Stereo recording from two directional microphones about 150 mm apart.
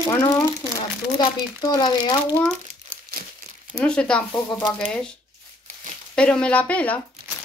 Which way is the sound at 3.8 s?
5° left (ahead or behind).